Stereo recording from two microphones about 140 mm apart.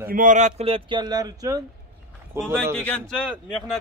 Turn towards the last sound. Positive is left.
turn(degrees=10)  # may be behind; listen again after turning